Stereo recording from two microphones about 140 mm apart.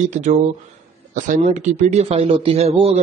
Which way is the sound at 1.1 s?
75° right (ahead or behind).